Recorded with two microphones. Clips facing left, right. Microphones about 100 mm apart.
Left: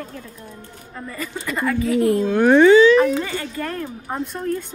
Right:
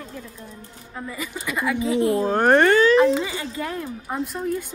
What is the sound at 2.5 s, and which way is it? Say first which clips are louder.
Speech: left 5 dB; 55° right (ahead or behind).